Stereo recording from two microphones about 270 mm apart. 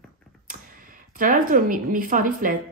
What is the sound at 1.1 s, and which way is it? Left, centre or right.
Speech, right.